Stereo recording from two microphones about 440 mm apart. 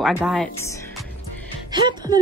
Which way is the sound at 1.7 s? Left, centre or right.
Centre.